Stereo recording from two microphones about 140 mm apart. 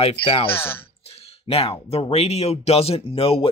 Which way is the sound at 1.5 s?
45° left (ahead or behind).